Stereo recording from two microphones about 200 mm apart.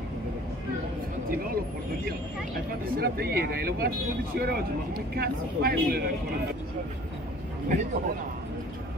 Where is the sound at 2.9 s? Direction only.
50° right (ahead or behind).